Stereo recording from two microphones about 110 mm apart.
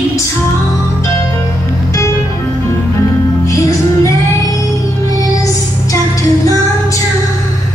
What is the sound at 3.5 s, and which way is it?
Music, 30° left (ahead or behind).